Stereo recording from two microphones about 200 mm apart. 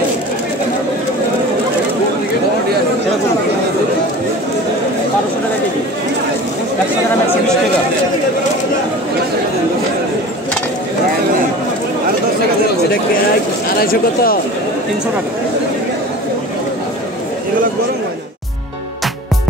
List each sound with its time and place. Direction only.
13.7 s speech: 45° left (ahead or behind)